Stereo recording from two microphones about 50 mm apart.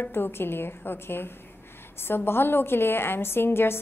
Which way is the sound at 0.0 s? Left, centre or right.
Left.